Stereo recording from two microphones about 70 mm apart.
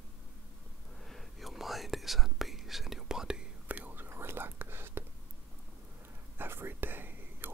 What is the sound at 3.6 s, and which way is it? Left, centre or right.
Whispering, right.